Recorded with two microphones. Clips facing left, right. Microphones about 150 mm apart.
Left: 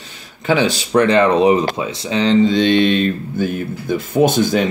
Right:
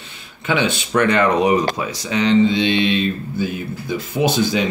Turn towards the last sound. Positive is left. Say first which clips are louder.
# left 4 dB
turn(degrees=50)  # may be behind; listen again after turning